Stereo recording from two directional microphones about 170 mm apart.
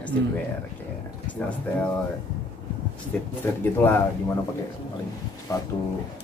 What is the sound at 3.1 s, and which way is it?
Speech, 5° left (ahead or behind).